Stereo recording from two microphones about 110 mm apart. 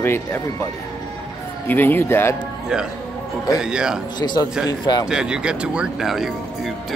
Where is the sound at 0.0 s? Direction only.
20° left (ahead or behind).